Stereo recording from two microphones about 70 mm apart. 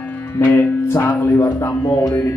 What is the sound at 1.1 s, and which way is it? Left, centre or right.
Speech, left.